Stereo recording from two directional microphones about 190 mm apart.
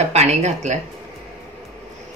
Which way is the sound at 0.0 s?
35° right (ahead or behind).